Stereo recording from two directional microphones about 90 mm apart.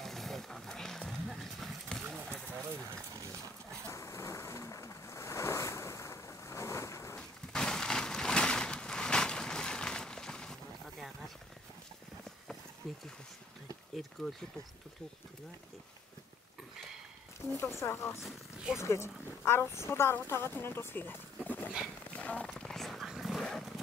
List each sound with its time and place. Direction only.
0.0 s horse: centre (ahead or behind)
2.7 s a sound: 35° right (ahead or behind)
3.9 s ocean: 35° left (ahead or behind)
7.2 s a sound: 5° left (ahead or behind)
14.2 s speech: centre (ahead or behind)
17.6 s speech: 30° left (ahead or behind)
18.2 s speech: 5° right (ahead or behind)
18.8 s speech: 30° left (ahead or behind)
21.5 s dog: 20° left (ahead or behind); by 23.4 s 5° right (ahead or behind)